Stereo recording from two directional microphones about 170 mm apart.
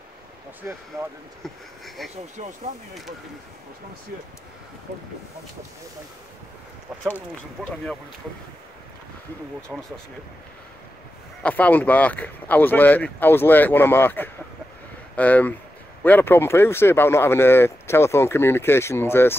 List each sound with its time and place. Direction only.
0.6 s speech: 10° right (ahead or behind)
2.0 s speech: centre (ahead or behind)
2.3 s speech: 45° right (ahead or behind)
9.7 s speech: 5° left (ahead or behind)
11.4 s speech: 10° left (ahead or behind)